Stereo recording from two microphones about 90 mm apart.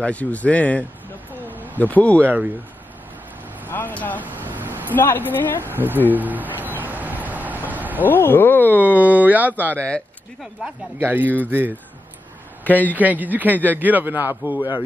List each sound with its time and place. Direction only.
0.0 s speech: 15° left (ahead or behind)
2.2 s speech: 20° right (ahead or behind)
3.7 s speech: 20° left (ahead or behind)
4.2 s vehicle: 20° right (ahead or behind)
4.9 s speech: 20° left (ahead or behind)
5.7 s a sound: 20° right (ahead or behind)
8.0 s speech: 20° left (ahead or behind)
8.7 s speech: 20° right (ahead or behind)
9.8 s speech: 10° left (ahead or behind)
11.0 s speech: 20° right (ahead or behind)
12.6 s a man's voice: 20° left (ahead or behind)
12.9 s speech: 20° right (ahead or behind)